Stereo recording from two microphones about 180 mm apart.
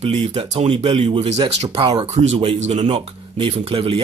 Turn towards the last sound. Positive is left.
turn(degrees=-30)  # may be behind; listen again after turning